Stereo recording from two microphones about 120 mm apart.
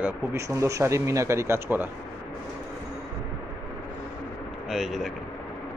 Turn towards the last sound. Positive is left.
turn(degrees=0)  # may be behind; listen again after turning